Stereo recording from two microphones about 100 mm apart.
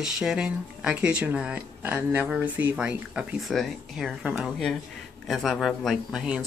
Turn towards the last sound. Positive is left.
turn(degrees=0)  # may be behind; listen again after turning